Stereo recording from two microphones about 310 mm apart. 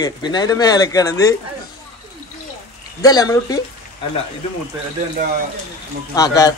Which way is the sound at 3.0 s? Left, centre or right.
Centre.